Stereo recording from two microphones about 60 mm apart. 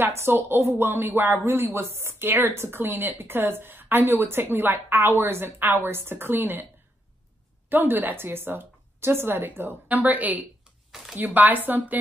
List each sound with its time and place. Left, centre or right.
0.0 s speech: right
7.7 s speech: right
10.9 s speech: centre
11.1 s speech: right